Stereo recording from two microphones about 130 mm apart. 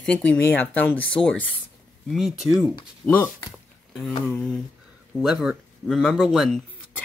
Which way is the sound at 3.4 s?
Centre (ahead or behind).